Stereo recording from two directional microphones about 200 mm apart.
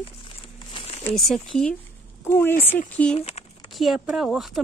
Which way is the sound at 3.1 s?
30° left (ahead or behind).